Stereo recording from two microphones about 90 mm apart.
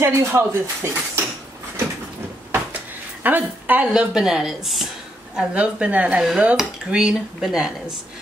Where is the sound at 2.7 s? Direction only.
20° right (ahead or behind).